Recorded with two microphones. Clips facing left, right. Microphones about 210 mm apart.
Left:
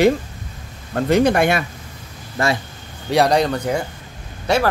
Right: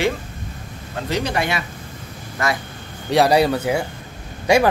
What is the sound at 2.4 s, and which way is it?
Speech, 30° left (ahead or behind).